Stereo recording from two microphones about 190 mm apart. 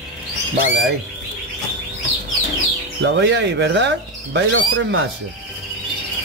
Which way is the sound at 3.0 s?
70° right (ahead or behind).